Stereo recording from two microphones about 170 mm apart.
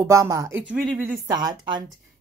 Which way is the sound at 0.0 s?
15° right (ahead or behind).